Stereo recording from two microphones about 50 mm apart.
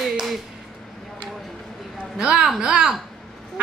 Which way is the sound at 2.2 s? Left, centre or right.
Centre.